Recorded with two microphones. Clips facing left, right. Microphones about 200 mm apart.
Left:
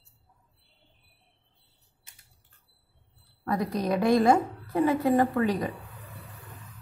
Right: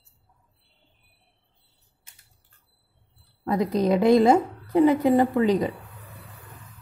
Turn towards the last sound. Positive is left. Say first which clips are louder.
# right 4 dB
turn(degrees=-20)  # may be behind; listen again after turning